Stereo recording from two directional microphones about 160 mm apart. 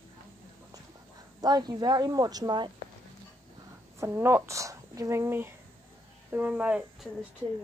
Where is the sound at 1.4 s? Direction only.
25° right (ahead or behind).